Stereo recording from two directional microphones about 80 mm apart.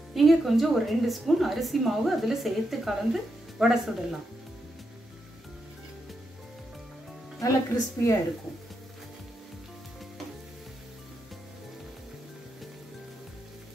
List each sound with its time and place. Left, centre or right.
0.1 s a woman's voice: centre
7.3 s a woman's voice: left